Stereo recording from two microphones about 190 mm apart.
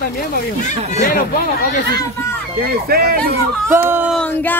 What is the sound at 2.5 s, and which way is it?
Speech, 55° right (ahead or behind).